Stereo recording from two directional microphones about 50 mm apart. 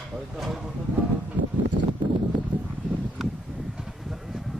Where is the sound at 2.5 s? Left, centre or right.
Right.